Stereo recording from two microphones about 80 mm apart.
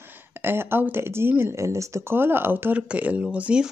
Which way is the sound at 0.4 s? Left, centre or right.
Right.